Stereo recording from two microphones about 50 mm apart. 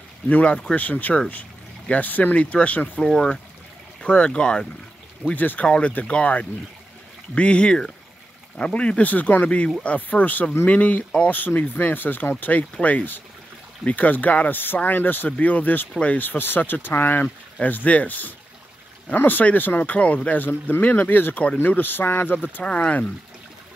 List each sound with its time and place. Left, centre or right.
0.3 s speech: left
3.0 s speech: centre
5.3 s speech: left
15.9 s speech: left
16.2 s speech: left
22.6 s speech: left